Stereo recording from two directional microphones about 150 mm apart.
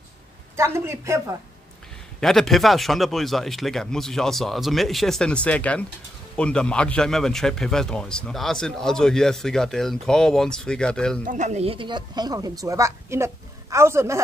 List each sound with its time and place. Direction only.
0.6 s speech: 20° right (ahead or behind)
2.1 s speech: 5° left (ahead or behind)
11.2 s speech: 55° right (ahead or behind); by 14.2 s 20° right (ahead or behind)